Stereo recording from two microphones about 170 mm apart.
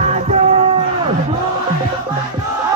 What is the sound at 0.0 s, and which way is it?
Music, 45° right (ahead or behind).